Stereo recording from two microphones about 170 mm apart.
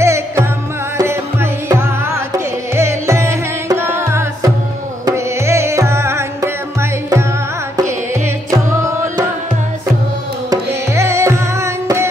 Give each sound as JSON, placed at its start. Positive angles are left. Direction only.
{"t": 0.0, "sound": "music", "side_deg": -15}
{"t": 8.5, "sound": "music", "side_deg": -20}
{"t": 10.5, "sound": "music", "side_deg": -15}